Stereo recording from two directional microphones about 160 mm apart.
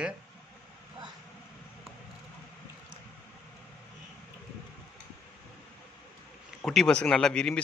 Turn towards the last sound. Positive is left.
turn(degrees=5)  # may be behind; listen again after turning